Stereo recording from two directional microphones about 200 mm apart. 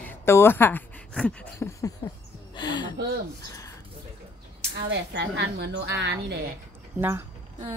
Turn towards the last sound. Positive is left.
turn(degrees=-10)  # may be behind; listen again after turning